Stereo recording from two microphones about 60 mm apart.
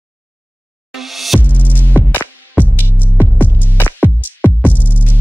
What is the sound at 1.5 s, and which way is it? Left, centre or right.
Music, left.